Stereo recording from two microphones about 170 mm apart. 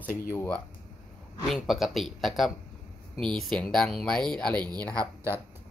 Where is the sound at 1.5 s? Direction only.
Centre (ahead or behind).